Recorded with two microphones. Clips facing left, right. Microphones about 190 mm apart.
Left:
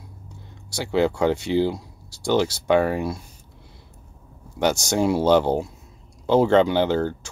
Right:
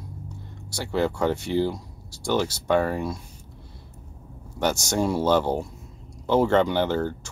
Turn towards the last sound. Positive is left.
turn(degrees=15)  # may be behind; listen again after turning